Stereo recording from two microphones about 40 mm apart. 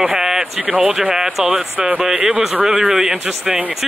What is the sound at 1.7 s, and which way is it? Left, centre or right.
Speech, right.